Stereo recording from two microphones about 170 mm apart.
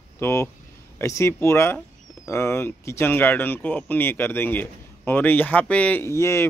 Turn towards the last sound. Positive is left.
turn(degrees=15)  # may be behind; listen again after turning